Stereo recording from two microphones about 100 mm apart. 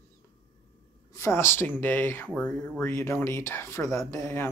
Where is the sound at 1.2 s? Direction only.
25° left (ahead or behind).